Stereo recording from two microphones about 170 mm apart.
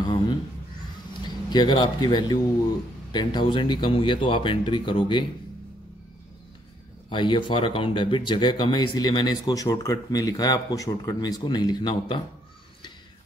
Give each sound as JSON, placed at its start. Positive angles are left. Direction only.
{"t": 1.2, "sound": "a man's voice", "side_deg": 25}
{"t": 7.1, "sound": "speech", "side_deg": 30}